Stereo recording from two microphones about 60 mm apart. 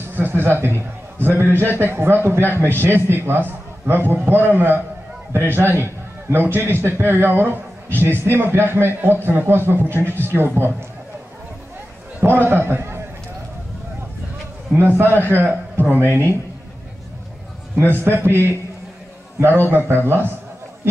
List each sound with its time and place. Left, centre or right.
0.1 s a man's voice: right
12.4 s a man's voice: right
14.7 s a man's voice: right
17.7 s a man's voice: right
20.1 s a man's voice: right